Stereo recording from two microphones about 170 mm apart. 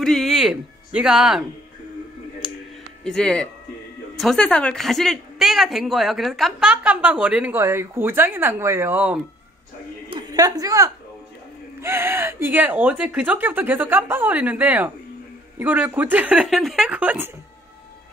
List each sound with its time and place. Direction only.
0.0 s a woman's voice: centre (ahead or behind)
3.0 s a woman's voice: 5° left (ahead or behind); by 9.2 s 10° right (ahead or behind)
10.0 s a sound: 25° right (ahead or behind)
11.8 s speech: 15° right (ahead or behind)